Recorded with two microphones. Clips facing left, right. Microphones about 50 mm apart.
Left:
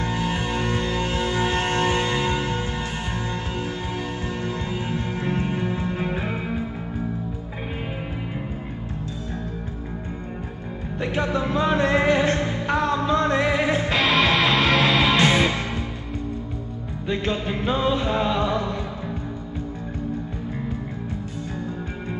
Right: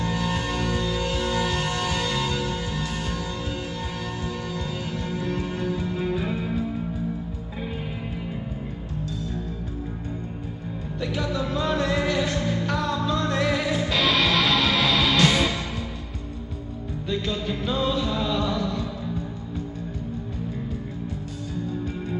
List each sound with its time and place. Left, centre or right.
0.0 s music: left
4.5 s music: left
11.0 s music: left
17.1 s music: left